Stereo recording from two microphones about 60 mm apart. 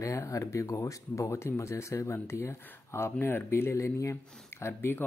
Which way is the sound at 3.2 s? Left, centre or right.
Left.